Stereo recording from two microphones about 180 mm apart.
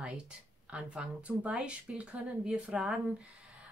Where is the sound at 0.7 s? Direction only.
5° right (ahead or behind).